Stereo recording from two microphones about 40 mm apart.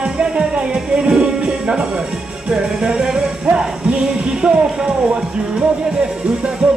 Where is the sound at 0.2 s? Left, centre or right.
Right.